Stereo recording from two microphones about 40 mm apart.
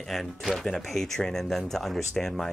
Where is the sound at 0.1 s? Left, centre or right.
Centre.